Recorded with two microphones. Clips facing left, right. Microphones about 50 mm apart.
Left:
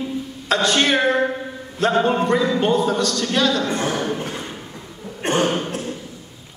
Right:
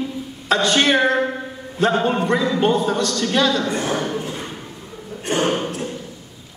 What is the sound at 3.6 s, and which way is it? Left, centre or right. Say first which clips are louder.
Speech: left 1 dB; left.